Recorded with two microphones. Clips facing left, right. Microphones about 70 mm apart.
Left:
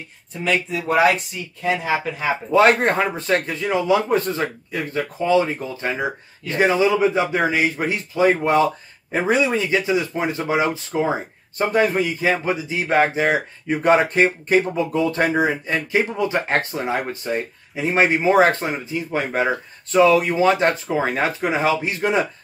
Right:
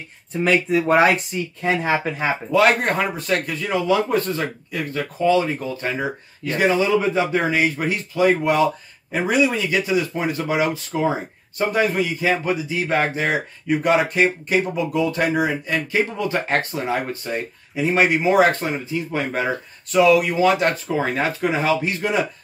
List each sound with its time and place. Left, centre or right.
0.4 s speech: right
1.6 s speech: right
2.5 s speech: left
11.5 s speech: left